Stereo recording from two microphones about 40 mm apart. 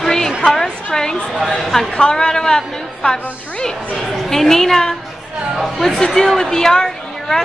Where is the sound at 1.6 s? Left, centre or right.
Centre.